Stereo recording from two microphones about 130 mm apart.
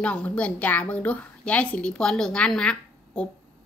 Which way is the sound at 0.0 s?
10° left (ahead or behind).